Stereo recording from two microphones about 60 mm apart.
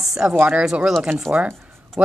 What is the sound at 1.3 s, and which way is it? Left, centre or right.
Speech, right.